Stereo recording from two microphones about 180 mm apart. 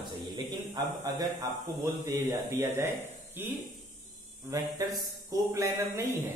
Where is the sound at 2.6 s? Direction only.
15° right (ahead or behind).